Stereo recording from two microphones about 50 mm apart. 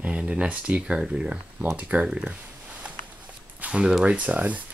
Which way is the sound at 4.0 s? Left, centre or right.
Right.